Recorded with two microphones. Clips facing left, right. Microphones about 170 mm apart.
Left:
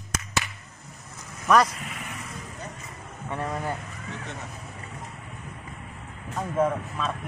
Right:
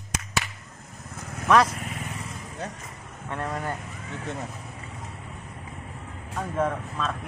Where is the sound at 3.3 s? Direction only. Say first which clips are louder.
Left 1 dB; 5° left (ahead or behind).